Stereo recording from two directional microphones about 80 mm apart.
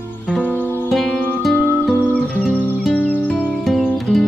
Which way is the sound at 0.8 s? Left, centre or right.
Centre.